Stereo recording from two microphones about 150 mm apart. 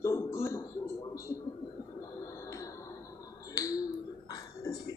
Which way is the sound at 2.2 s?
20° left (ahead or behind).